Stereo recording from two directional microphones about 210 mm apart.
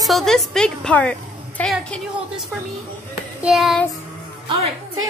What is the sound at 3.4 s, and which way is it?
Speech, centre (ahead or behind).